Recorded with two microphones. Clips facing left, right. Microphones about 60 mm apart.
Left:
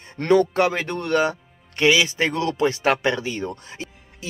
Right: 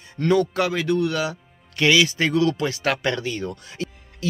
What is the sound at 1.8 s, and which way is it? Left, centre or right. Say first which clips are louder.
Speech: even; left.